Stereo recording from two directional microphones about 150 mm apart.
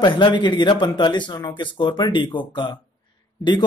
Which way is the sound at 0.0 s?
30° left (ahead or behind).